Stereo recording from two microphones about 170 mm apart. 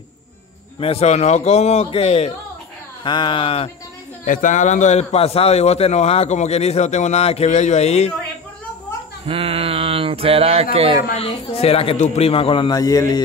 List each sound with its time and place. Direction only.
0.7 s a man's voice: 35° left (ahead or behind)
3.0 s speech: 25° left (ahead or behind)
4.2 s a man's voice: 50° left (ahead or behind)
9.2 s a sound: 35° right (ahead or behind)
11.1 s a man's voice: 35° left (ahead or behind)